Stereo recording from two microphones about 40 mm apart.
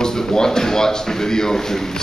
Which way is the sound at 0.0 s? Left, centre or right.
Centre.